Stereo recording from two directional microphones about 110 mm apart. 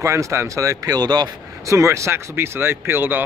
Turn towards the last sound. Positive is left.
turn(degrees=-20)  # may be behind; listen again after turning